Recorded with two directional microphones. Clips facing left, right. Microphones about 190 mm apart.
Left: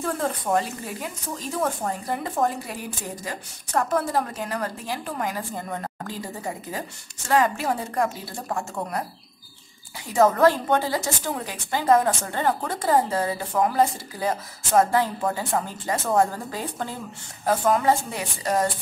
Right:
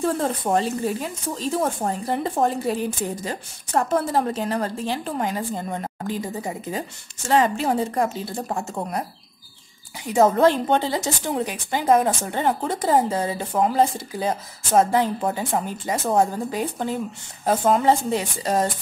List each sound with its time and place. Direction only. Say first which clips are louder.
0.0 s a woman's voice: right 4 dB; 30° right (ahead or behind)
10.0 s a woman's voice: right 1 dB; 20° right (ahead or behind)